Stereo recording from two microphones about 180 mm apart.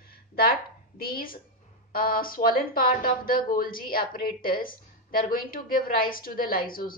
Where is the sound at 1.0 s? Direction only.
55° left (ahead or behind).